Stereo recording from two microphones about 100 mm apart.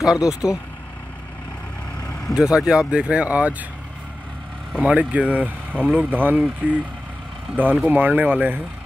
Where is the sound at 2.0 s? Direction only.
35° left (ahead or behind).